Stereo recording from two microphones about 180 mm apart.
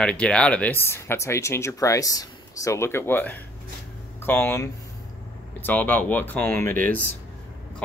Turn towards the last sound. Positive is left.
turn(degrees=10)  # may be behind; listen again after turning